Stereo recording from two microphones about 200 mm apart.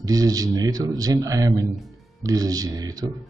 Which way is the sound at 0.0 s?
20° right (ahead or behind).